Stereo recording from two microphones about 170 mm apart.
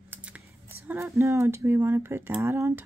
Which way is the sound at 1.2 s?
15° right (ahead or behind).